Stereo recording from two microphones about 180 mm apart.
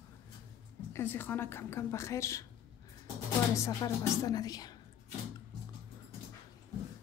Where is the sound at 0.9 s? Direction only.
10° left (ahead or behind).